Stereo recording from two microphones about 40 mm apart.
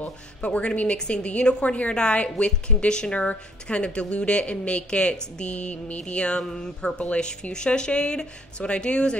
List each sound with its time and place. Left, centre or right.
0.0 s a woman's voice: left; by 7.0 s centre
7.0 s a woman's voice: left